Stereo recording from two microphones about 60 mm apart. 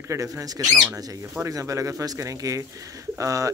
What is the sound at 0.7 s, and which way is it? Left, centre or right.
Speech, right.